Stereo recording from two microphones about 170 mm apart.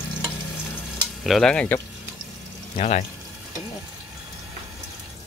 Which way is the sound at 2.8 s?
45° left (ahead or behind).